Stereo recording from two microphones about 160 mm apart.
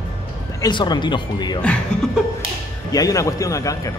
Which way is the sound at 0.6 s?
25° left (ahead or behind).